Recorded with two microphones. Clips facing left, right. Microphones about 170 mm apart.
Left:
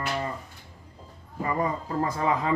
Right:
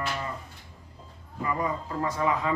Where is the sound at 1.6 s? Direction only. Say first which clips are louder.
Left 4 dB; 35° left (ahead or behind).